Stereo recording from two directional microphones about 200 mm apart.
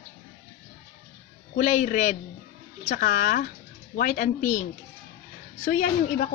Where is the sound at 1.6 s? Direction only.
40° left (ahead or behind).